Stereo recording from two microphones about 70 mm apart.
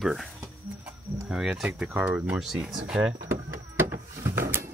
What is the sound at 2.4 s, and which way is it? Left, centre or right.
Speech, centre.